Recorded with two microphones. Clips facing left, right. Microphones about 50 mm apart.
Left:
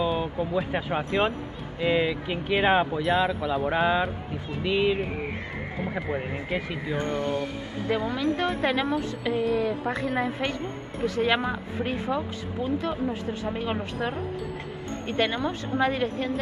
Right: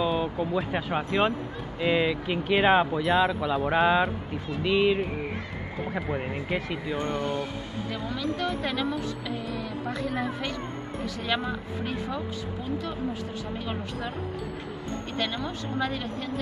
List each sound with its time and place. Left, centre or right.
0.0 s speech: centre
4.5 s speech: centre
6.1 s speech: centre
8.1 s speech: left